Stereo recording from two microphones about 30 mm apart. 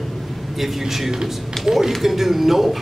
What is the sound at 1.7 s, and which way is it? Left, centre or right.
Speech, right.